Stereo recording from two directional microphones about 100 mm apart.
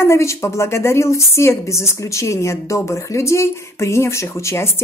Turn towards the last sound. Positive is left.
turn(degrees=25)  # may be behind; listen again after turning